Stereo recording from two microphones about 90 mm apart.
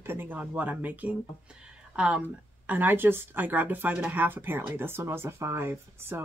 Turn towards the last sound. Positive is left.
turn(degrees=-25)  # may be behind; listen again after turning